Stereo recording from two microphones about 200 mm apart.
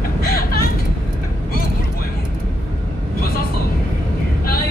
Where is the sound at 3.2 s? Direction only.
50° left (ahead or behind).